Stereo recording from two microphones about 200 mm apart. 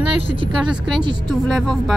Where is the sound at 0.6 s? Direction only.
Centre (ahead or behind).